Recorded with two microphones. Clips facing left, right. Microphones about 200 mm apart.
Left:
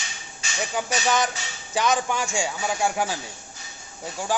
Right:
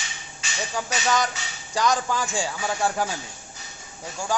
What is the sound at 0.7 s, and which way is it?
Music, 20° left (ahead or behind).